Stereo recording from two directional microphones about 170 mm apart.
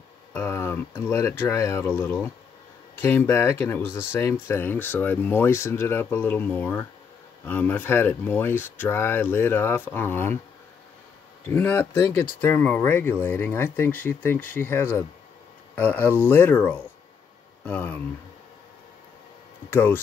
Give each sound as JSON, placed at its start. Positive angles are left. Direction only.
{"t": 0.3, "sound": "speech", "side_deg": 15}
{"t": 11.4, "sound": "speech", "side_deg": 10}
{"t": 19.7, "sound": "speech", "side_deg": 10}